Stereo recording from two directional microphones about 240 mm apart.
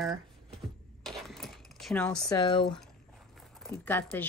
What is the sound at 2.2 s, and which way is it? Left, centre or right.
Speech, centre.